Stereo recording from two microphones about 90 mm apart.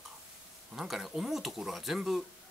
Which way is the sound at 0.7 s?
5° right (ahead or behind).